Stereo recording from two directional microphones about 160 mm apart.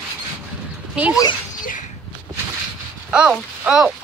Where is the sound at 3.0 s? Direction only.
5° right (ahead or behind).